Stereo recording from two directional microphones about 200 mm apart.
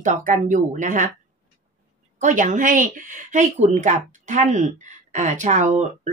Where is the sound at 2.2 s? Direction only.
40° right (ahead or behind).